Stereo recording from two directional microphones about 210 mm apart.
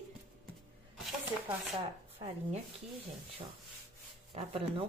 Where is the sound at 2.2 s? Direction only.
30° right (ahead or behind).